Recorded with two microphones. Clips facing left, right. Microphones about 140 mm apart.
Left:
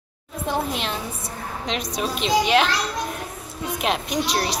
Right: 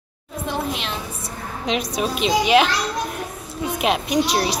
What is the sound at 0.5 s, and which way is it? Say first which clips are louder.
Speech: left 1 dB; 50° left (ahead or behind).